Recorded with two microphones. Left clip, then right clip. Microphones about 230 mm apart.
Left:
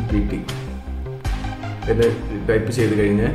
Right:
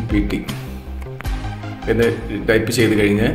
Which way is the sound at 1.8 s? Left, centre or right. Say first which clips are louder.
Right 1 dB; centre.